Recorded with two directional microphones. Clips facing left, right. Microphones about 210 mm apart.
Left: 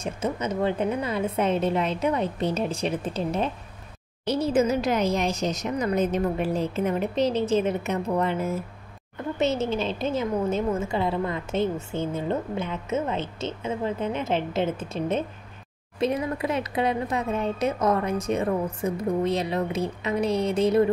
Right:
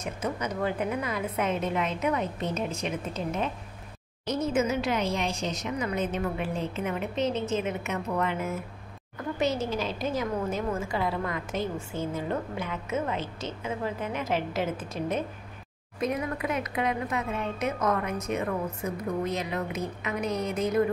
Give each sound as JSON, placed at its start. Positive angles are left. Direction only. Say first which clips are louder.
{"t": 0.0, "sound": "a woman's voice", "louder": "left 4 dB", "side_deg": 25}